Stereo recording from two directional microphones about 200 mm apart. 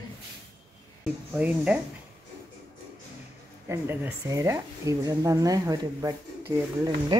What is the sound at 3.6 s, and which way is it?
Speech, 10° right (ahead or behind).